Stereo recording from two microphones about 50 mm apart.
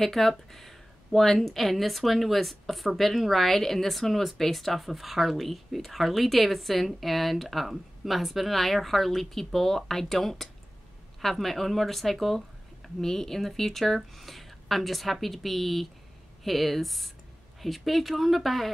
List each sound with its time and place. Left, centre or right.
0.0 s speech: centre